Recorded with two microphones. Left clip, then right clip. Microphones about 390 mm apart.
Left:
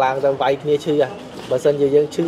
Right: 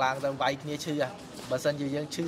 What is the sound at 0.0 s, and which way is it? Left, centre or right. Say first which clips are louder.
Speech: left 11 dB; right.